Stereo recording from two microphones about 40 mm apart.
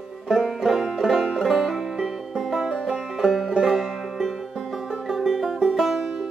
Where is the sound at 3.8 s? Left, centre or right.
Centre.